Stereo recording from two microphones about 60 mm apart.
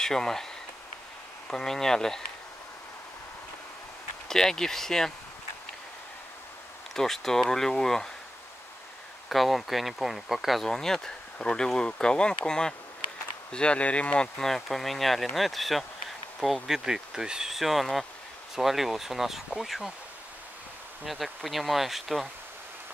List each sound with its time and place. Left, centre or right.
0.0 s speech: centre
1.5 s speech: centre
4.3 s speech: centre
7.0 s speech: centre
9.3 s speech: centre
10.7 s speech: centre
14.5 s speech: centre
21.0 s speech: centre